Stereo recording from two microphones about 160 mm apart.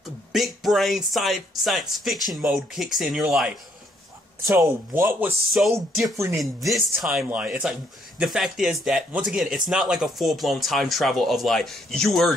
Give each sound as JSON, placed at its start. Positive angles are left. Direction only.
{"t": 0.3, "sound": "speech", "side_deg": 0}
{"t": 4.5, "sound": "speech", "side_deg": -15}
{"t": 6.4, "sound": "speech", "side_deg": 0}